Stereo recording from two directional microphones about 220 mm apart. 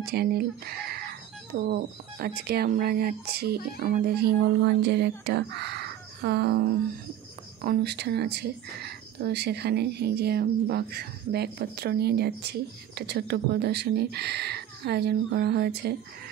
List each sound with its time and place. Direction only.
0.0 s speech: 45° right (ahead or behind)